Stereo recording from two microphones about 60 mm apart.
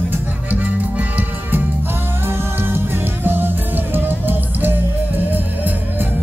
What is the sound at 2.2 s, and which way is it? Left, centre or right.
Music, right.